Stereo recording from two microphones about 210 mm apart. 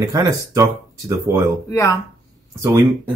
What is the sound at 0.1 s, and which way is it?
Speech, 15° right (ahead or behind).